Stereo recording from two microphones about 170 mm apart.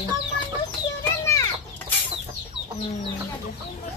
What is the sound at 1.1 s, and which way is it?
Chicken, 15° left (ahead or behind).